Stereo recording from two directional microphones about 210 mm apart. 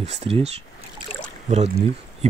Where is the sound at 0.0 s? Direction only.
30° right (ahead or behind).